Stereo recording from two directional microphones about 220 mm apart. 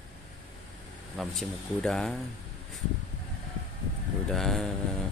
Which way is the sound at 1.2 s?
Centre (ahead or behind).